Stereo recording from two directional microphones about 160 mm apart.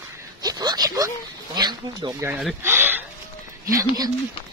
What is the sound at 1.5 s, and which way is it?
Speech, 25° right (ahead or behind).